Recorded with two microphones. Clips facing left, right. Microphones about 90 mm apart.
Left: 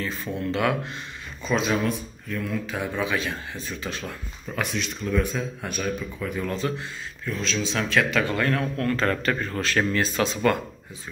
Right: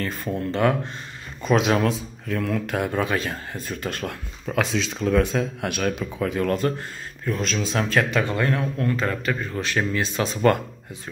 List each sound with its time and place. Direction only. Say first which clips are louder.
0.0 s speech: right 3 dB; 55° right (ahead or behind)
0.5 s speech: right 3 dB; 35° right (ahead or behind)
1.4 s speech: right 4 dB; 65° right (ahead or behind); by 6.5 s 80° right
6.5 s speech: right 4 dB; 50° right (ahead or behind)
8.2 s a man's voice: right 1 dB; 25° right (ahead or behind)
10.2 s speech: right 4 dB; 30° right (ahead or behind)